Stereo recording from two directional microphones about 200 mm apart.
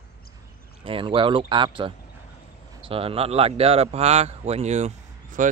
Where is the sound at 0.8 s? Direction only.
25° right (ahead or behind).